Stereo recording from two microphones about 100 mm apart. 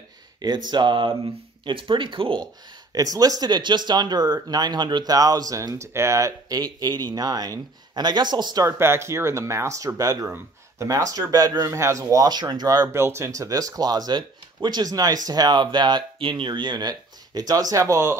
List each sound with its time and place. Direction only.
0.4 s speech: 45° right (ahead or behind)
2.9 s speech: 40° right (ahead or behind)
8.6 s speech: 25° right (ahead or behind)